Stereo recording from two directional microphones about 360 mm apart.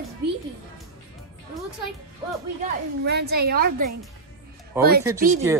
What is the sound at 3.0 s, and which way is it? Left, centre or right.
Speech, right.